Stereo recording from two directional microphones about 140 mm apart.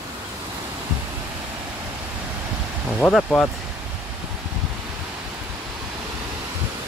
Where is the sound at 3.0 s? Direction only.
5° left (ahead or behind).